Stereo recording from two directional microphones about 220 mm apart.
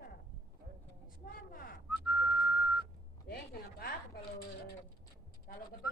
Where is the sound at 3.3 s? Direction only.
45° left (ahead or behind).